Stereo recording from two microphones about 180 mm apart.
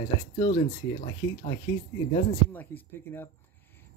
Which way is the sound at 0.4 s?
20° left (ahead or behind).